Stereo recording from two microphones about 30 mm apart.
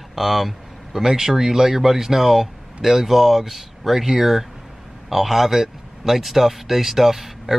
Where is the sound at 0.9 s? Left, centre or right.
Centre.